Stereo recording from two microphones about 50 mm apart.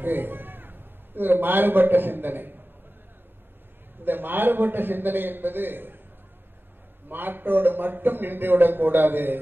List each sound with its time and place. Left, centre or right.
0.0 s a man's voice: right
4.0 s a man's voice: right
7.1 s a man's voice: right